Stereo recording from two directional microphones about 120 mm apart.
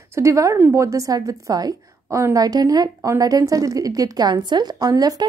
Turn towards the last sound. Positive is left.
turn(degrees=-30)  # may be behind; listen again after turning